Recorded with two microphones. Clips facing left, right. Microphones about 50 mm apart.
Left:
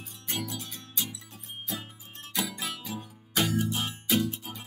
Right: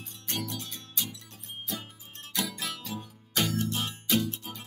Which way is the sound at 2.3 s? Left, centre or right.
Centre.